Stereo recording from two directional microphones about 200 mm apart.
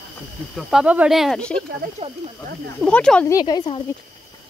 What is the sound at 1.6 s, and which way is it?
Speech, 30° right (ahead or behind).